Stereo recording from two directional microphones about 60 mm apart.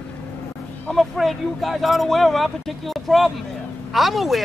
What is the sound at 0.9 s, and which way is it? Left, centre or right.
Speech, centre.